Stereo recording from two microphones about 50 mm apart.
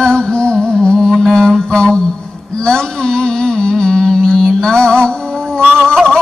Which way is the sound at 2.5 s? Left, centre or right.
Centre.